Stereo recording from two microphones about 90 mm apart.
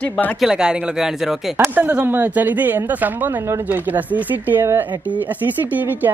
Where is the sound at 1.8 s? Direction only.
15° right (ahead or behind).